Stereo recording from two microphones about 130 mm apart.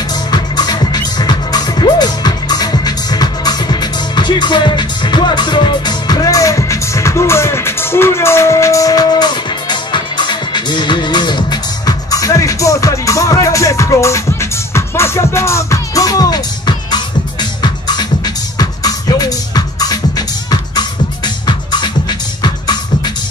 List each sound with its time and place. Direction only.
0.3 s music: 30° left (ahead or behind)
21.5 s music: 35° left (ahead or behind)